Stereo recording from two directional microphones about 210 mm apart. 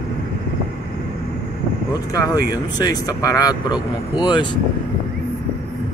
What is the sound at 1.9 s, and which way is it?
Speech, 20° left (ahead or behind).